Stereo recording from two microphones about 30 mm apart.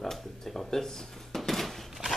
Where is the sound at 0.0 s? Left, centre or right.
Centre.